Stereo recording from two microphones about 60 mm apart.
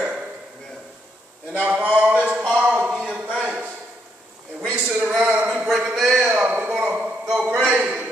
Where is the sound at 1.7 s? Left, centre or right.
Right.